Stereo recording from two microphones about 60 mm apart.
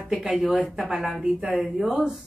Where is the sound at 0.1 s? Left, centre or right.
Centre.